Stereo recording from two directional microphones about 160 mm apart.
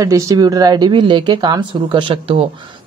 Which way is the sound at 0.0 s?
20° right (ahead or behind).